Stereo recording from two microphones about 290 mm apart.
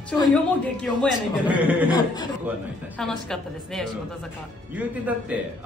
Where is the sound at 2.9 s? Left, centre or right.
Centre.